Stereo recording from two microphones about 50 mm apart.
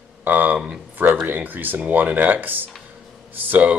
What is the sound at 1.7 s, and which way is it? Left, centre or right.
Speech, right.